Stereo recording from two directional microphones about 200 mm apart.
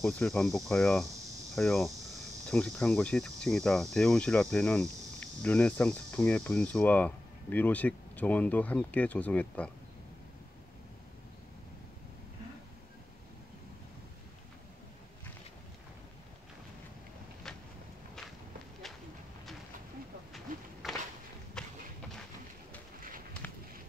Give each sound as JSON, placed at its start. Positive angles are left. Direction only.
{"t": 0.0, "sound": "cricket", "side_deg": 5}
{"t": 1.5, "sound": "speech", "side_deg": 0}
{"t": 20.5, "sound": "walk", "side_deg": -45}
{"t": 21.6, "sound": "run", "side_deg": 5}
{"t": 23.4, "sound": "a sound", "side_deg": 10}